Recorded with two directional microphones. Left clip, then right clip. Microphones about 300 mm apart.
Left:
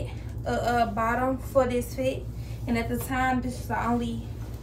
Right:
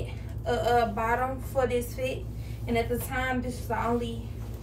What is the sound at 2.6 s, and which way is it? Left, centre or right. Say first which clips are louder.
A woman's voice: right 1 dB; centre.